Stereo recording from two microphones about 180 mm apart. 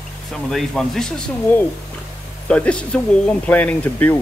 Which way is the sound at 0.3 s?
Centre (ahead or behind).